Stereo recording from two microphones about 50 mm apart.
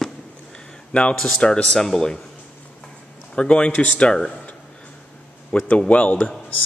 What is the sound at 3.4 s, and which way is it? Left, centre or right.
Speech, left.